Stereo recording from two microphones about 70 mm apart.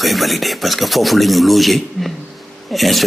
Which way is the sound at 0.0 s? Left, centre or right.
Centre.